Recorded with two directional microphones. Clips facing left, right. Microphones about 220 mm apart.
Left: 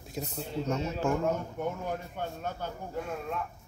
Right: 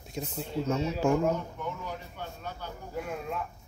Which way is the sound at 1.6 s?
50° left (ahead or behind).